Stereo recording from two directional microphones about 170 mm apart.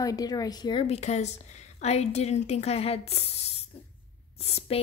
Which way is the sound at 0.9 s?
40° left (ahead or behind).